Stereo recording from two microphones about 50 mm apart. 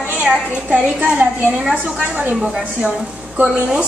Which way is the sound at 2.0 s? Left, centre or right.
Right.